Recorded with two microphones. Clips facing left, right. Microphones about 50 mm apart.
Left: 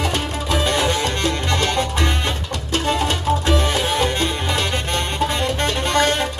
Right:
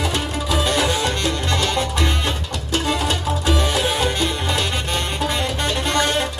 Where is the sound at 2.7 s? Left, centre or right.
Left.